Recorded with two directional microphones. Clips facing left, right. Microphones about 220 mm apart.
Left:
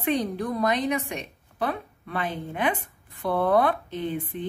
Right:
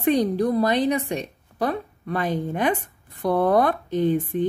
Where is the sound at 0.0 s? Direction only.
40° right (ahead or behind).